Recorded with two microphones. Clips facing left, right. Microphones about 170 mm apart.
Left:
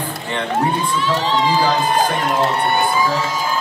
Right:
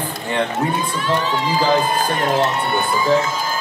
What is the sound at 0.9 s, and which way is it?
Crowd, 50° right (ahead or behind).